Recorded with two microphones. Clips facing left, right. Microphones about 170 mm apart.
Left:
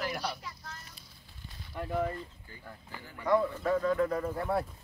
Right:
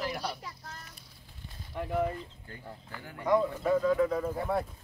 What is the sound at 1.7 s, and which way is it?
Speech, 10° right (ahead or behind).